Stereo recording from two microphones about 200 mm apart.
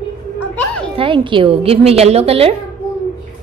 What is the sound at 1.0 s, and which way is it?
A woman's voice, 25° right (ahead or behind).